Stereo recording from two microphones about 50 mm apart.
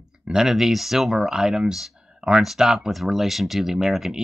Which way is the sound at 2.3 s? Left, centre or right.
Centre.